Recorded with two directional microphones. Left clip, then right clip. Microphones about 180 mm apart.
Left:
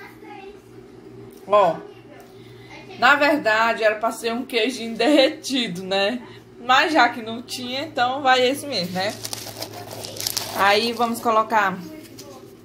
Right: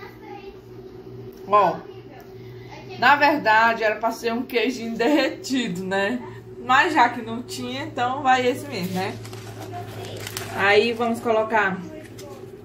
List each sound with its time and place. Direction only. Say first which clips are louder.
3.0 s a woman's voice: even; 40° left (ahead or behind)
10.6 s a woman's voice: even; 50° left (ahead or behind)